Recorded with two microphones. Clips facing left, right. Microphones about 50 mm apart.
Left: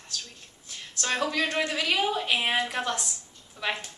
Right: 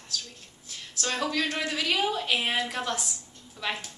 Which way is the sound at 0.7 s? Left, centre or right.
Centre.